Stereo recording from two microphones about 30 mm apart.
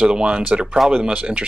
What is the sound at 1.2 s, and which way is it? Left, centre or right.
Speech, right.